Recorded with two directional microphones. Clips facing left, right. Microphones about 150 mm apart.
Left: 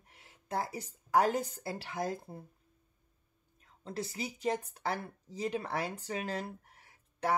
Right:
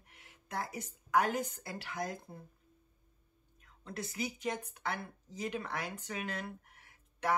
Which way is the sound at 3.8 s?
30° left (ahead or behind).